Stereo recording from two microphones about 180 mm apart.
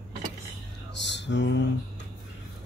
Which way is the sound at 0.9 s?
75° left (ahead or behind).